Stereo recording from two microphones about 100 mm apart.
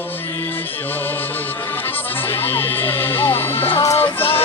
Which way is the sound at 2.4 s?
20° left (ahead or behind).